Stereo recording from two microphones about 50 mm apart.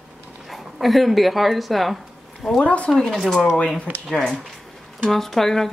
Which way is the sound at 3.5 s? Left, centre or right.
Centre.